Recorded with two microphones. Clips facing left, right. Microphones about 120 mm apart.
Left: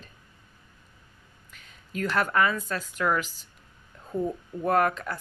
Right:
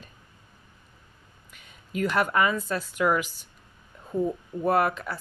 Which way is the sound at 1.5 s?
10° right (ahead or behind).